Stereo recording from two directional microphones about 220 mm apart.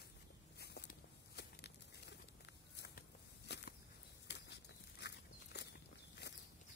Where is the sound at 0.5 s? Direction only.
50° left (ahead or behind).